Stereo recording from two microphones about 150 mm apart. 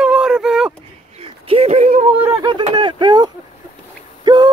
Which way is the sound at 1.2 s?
40° right (ahead or behind).